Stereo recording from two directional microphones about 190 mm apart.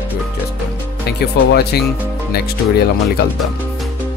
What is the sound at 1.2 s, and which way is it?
Speech, 60° left (ahead or behind).